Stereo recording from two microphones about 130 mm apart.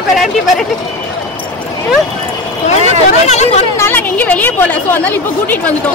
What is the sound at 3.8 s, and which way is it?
A woman's voice, 15° left (ahead or behind).